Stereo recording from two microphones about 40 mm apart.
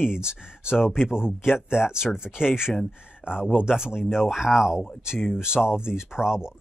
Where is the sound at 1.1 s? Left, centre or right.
Centre.